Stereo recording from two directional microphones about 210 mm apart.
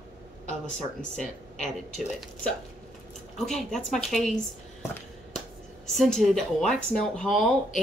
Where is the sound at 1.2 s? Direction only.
Centre (ahead or behind).